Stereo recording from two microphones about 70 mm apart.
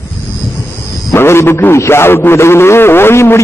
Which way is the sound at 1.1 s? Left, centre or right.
Left.